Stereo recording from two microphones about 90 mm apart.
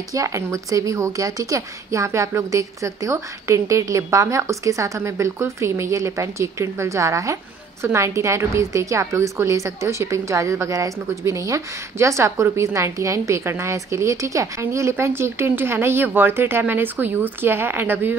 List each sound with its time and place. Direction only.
0.1 s a woman's voice: 35° right (ahead or behind)